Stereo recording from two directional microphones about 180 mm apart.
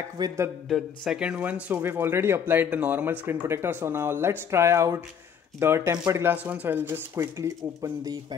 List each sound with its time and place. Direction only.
0.2 s speech: 25° right (ahead or behind)
0.7 s speech: centre (ahead or behind); by 8.4 s 20° right (ahead or behind)